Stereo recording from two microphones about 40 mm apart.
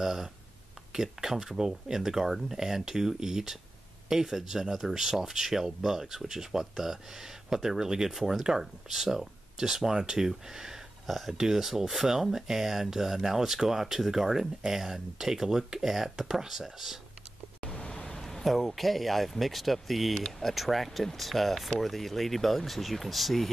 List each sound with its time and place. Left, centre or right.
0.0 s speech: centre
11.1 s speech: centre
17.6 s speech: centre